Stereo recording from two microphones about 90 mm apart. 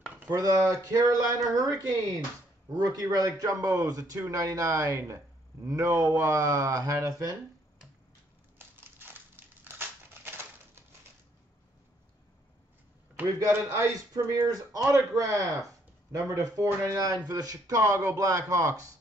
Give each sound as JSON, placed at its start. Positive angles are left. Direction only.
{"t": 0.3, "sound": "speech", "side_deg": -40}
{"t": 8.5, "sound": "crumpling", "side_deg": -25}
{"t": 13.5, "sound": "speech", "side_deg": -30}